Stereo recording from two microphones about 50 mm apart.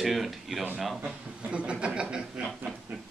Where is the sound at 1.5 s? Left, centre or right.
Right.